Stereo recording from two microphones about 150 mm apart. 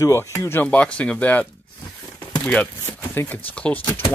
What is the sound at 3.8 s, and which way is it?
Speech, 30° left (ahead or behind).